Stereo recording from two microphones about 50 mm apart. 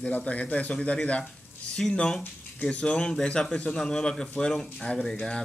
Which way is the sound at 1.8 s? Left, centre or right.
Centre.